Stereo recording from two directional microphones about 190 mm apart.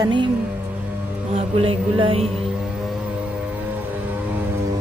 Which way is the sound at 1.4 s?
30° right (ahead or behind).